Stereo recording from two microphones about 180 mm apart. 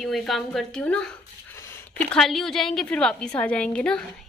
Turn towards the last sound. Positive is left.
turn(degrees=5)  # may be behind; listen again after turning